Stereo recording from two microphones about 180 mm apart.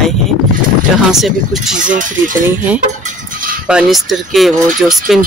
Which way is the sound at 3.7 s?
5° right (ahead or behind).